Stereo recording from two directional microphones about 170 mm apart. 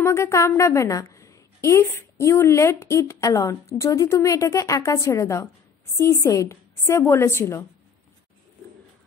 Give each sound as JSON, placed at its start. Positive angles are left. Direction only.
{"t": 0.0, "sound": "a woman's voice", "side_deg": 15}